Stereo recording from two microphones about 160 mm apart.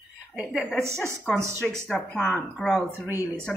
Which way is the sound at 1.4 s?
15° right (ahead or behind).